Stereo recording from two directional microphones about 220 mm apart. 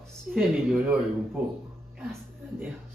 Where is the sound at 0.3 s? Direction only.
5° right (ahead or behind).